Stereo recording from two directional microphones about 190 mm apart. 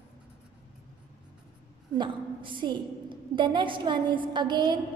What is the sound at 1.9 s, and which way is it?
A woman's voice, 25° right (ahead or behind).